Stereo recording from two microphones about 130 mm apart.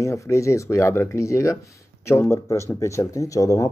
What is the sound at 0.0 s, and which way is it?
Speech, 25° left (ahead or behind).